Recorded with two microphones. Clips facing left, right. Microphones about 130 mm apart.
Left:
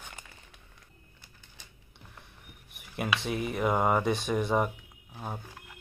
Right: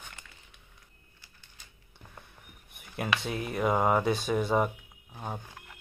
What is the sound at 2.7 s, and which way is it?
Speech, centre (ahead or behind).